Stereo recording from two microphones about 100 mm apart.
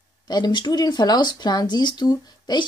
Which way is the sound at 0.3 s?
45° left (ahead or behind).